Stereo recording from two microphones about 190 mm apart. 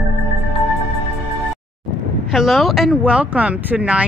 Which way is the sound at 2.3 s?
Centre (ahead or behind).